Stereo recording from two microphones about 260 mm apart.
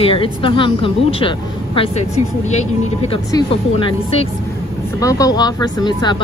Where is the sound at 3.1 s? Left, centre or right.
Left.